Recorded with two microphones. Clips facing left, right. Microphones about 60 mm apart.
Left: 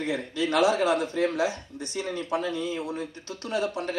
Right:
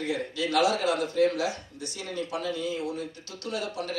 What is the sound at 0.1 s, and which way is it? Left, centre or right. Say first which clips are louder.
Speech: left 1 dB; left.